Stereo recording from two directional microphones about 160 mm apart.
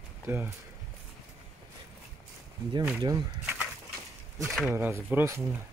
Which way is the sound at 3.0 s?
20° right (ahead or behind).